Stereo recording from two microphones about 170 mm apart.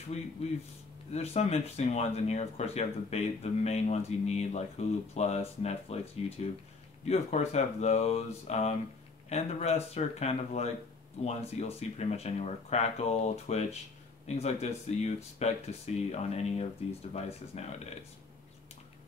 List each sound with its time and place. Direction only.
0.4 s speech: 35° left (ahead or behind)